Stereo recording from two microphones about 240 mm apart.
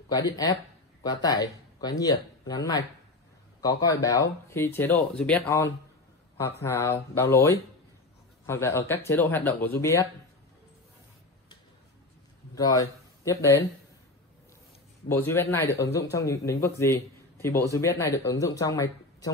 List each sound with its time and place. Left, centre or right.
0.1 s a man's voice: centre
12.5 s speech: centre
15.0 s a man's voice: centre